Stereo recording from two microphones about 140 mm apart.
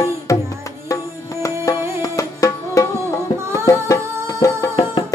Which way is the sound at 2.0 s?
25° left (ahead or behind).